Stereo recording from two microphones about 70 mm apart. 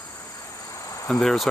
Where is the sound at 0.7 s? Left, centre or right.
Left.